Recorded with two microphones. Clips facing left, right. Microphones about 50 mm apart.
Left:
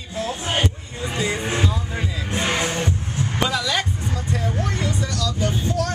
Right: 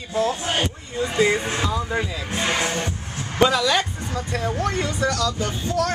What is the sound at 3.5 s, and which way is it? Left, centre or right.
Speech, right.